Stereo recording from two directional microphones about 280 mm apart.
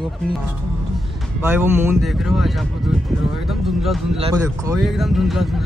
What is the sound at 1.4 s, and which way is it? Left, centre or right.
Speech, centre.